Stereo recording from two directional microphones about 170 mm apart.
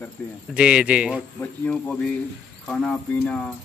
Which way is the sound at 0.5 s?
5° right (ahead or behind).